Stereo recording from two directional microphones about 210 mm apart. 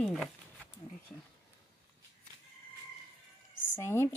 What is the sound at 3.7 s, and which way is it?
Speech, 10° left (ahead or behind).